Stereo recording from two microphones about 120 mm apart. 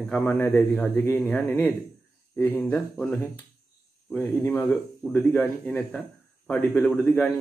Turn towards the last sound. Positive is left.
turn(degrees=15)  # may be behind; listen again after turning